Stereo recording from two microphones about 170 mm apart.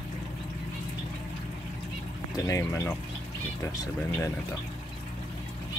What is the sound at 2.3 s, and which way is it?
Speech, 20° left (ahead or behind).